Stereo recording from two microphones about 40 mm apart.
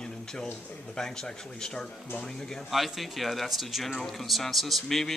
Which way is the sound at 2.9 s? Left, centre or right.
Centre.